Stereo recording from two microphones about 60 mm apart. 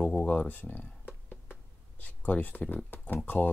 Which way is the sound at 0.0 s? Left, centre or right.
Centre.